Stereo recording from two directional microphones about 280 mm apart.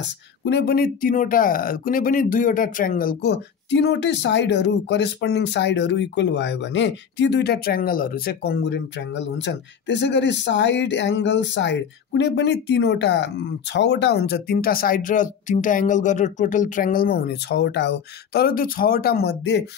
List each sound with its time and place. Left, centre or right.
0.0 s speech: left